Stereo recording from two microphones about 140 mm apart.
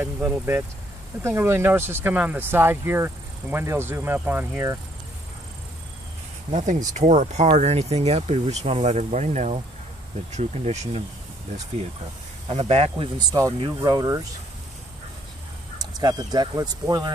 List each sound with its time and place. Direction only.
0.0 s speech: 15° right (ahead or behind)
6.5 s speech: 60° right (ahead or behind)
12.4 s speech: 50° right (ahead or behind)
13.3 s speech: 25° right (ahead or behind)
15.8 s speech: 25° right (ahead or behind)